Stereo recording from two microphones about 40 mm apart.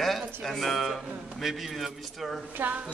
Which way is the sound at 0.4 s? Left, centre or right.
Centre.